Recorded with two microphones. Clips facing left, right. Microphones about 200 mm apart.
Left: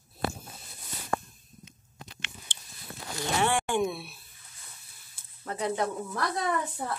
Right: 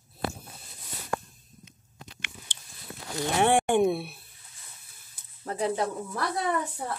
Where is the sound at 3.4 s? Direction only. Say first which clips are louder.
Right 6 dB; 55° right (ahead or behind).